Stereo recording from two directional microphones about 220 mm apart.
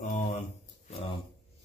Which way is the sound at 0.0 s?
35° left (ahead or behind).